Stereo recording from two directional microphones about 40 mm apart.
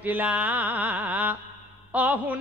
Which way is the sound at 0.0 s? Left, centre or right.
Right.